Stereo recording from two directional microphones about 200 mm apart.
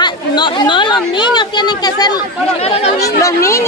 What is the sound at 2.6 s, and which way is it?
Speech, 30° left (ahead or behind).